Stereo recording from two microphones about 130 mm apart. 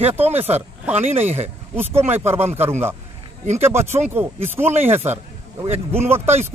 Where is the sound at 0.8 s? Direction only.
15° right (ahead or behind).